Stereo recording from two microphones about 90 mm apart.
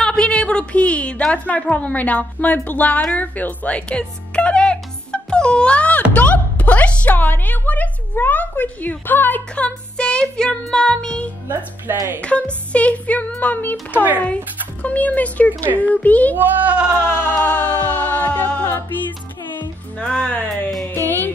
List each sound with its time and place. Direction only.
0.0 s a woman's voice: 10° left (ahead or behind)
9.9 s music: 10° left (ahead or behind)
11.4 s speech: 25° right (ahead or behind)
12.2 s music: 15° left (ahead or behind)
15.6 s speech: 20° right (ahead or behind)
15.9 s music: 15° left (ahead or behind)
16.3 s speech: 20° right (ahead or behind)
16.9 s music: 20° left (ahead or behind)
20.0 s music: 10° left (ahead or behind)